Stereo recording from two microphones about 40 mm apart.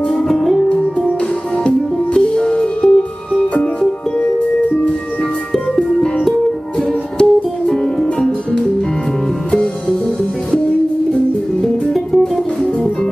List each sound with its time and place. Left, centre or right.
0.1 s music: centre
1.6 s music: left
7.2 s music: centre
11.6 s music: centre